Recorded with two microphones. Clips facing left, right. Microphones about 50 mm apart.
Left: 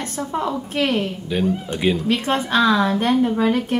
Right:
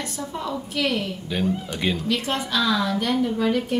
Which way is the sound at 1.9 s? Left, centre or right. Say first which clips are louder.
Left 5 dB; left.